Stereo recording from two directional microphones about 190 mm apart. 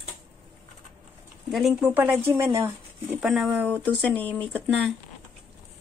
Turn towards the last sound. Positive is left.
turn(degrees=5)  # may be behind; listen again after turning